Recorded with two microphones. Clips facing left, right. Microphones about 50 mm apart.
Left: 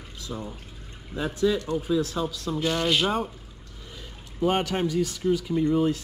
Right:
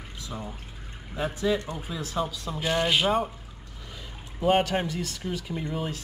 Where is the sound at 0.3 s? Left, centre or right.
Right.